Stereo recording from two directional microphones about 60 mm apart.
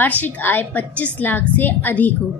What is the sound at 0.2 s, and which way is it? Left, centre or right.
A woman's voice, left.